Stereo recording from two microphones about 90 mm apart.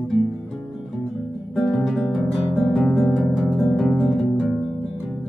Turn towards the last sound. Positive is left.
turn(degrees=0)  # may be behind; listen again after turning